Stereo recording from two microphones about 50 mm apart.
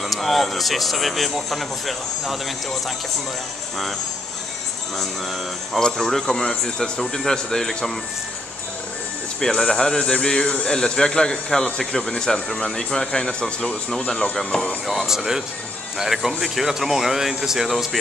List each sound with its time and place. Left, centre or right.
0.0 s speech: centre
5.8 s a man's voice: centre
9.4 s a man's voice: centre
14.9 s speech: centre